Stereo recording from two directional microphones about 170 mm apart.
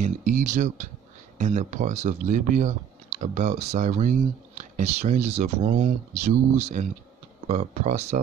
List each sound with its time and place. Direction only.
0.0 s speech: 50° right (ahead or behind)